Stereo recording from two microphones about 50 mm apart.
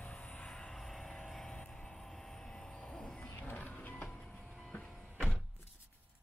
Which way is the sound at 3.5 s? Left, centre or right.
Left.